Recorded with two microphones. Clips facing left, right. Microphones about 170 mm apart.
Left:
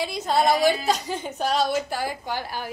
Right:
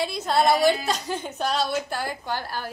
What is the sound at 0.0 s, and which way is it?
A woman's voice, 10° left (ahead or behind).